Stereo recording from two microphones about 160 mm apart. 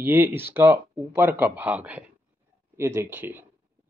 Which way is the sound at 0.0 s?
10° right (ahead or behind).